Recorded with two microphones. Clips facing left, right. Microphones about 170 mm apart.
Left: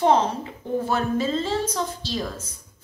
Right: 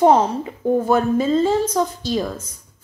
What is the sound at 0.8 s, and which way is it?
A woman's voice, 50° right (ahead or behind).